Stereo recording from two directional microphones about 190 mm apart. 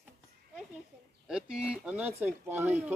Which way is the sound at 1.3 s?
5° right (ahead or behind).